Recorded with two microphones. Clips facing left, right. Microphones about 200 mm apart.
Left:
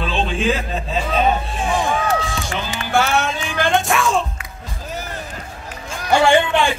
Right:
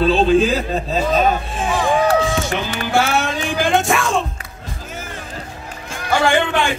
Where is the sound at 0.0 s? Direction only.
35° right (ahead or behind).